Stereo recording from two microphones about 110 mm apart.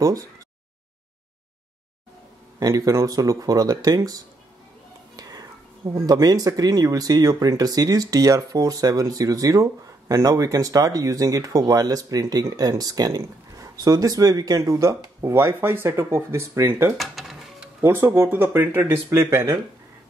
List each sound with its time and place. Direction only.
2.6 s speech: 30° right (ahead or behind)
16.9 s dishes: centre (ahead or behind)
17.8 s speech: 20° right (ahead or behind)